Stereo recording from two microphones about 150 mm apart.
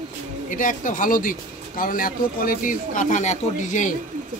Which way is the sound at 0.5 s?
60° left (ahead or behind).